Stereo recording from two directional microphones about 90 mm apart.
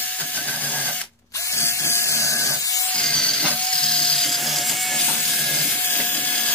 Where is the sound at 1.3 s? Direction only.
35° left (ahead or behind).